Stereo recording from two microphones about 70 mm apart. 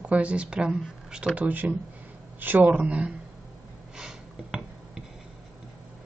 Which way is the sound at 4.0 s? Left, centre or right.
Centre.